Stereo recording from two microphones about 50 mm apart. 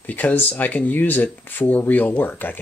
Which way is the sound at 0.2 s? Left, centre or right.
Left.